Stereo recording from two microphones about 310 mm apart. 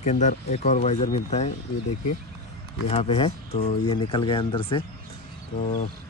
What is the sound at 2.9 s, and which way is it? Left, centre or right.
Speech, centre.